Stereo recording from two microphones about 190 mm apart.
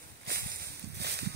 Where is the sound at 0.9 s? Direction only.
60° right (ahead or behind).